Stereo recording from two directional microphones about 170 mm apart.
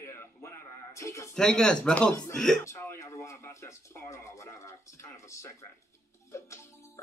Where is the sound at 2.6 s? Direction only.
15° left (ahead or behind).